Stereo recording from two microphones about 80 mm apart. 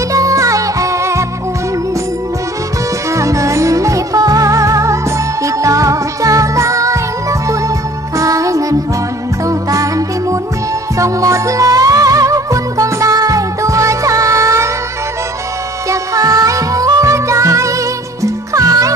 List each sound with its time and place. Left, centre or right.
0.1 s music: right
3.2 s music: right
15.9 s music: right